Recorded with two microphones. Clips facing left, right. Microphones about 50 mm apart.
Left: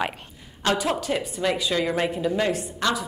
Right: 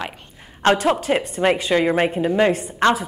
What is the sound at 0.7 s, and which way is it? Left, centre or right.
Speech, right.